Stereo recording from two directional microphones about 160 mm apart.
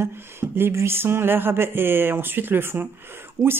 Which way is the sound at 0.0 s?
15° right (ahead or behind).